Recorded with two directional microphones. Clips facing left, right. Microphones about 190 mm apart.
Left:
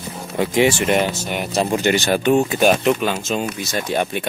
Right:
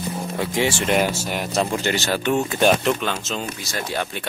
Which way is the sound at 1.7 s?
15° left (ahead or behind).